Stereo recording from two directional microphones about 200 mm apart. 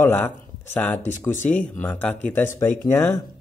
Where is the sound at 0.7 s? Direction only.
10° left (ahead or behind).